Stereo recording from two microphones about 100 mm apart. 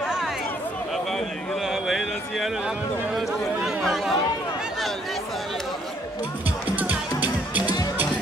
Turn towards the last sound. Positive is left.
turn(degrees=45)  # may be behind; listen again after turning